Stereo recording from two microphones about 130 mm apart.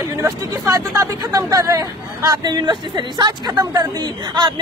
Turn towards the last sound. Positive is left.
turn(degrees=-35)  # may be behind; listen again after turning